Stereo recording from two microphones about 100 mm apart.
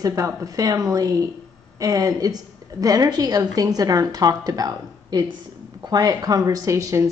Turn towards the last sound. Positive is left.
turn(degrees=-30)  # may be behind; listen again after turning